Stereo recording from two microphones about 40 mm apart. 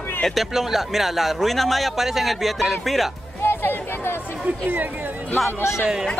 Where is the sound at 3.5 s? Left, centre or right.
Left.